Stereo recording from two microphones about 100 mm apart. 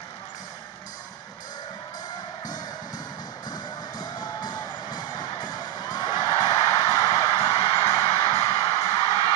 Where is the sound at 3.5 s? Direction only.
45° left (ahead or behind); by 8.5 s 25° left (ahead or behind).